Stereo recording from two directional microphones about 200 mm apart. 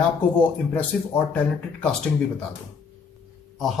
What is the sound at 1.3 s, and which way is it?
Speech, 5° left (ahead or behind).